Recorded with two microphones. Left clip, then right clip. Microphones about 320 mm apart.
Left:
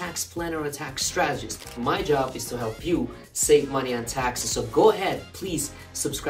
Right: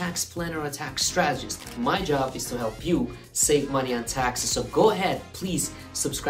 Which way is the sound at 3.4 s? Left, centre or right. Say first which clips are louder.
Left 3 dB; centre.